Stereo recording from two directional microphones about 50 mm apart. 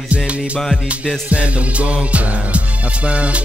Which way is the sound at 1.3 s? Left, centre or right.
Right.